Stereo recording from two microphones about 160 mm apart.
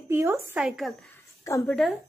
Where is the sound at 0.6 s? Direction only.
Centre (ahead or behind).